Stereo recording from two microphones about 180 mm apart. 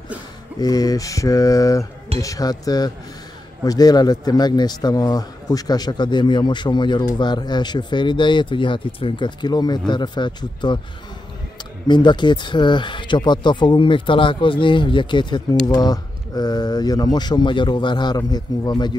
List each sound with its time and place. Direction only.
0.6 s speech: 20° left (ahead or behind)
11.9 s speech: 25° left (ahead or behind)